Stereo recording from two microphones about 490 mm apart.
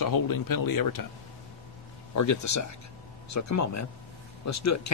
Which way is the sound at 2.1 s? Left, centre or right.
Left.